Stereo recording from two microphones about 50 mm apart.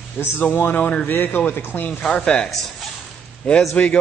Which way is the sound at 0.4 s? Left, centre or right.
Left.